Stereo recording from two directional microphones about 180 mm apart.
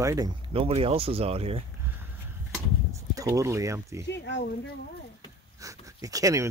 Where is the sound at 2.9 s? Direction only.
15° right (ahead or behind).